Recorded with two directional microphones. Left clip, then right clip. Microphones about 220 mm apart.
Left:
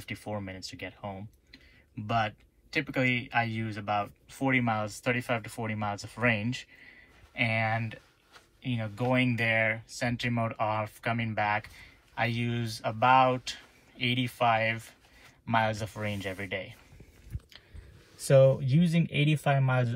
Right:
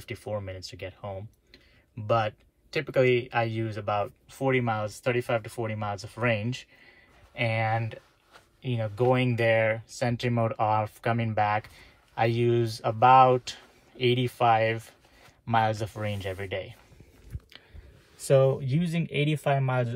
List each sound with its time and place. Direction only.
0.0 s speech: 10° right (ahead or behind)
19.1 s speech: 15° right (ahead or behind)